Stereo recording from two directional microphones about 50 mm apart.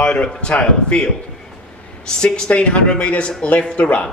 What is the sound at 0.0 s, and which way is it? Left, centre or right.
A woman's voice, centre.